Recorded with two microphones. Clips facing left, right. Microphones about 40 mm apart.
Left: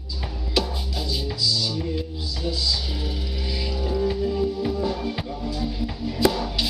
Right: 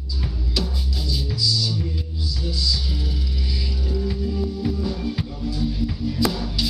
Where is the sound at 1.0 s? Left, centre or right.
Left.